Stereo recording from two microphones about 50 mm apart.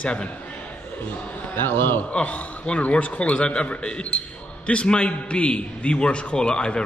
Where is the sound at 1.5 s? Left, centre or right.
Left.